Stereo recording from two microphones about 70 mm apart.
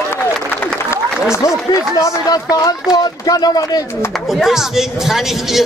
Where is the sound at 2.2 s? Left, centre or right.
Left.